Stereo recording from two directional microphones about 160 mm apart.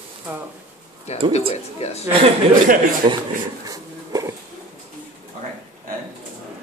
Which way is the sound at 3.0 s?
30° right (ahead or behind).